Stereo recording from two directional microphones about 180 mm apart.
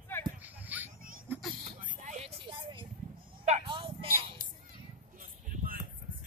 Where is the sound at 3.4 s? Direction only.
35° right (ahead or behind).